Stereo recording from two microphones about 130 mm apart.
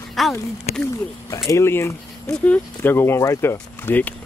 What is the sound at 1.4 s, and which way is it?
Speech, 20° left (ahead or behind).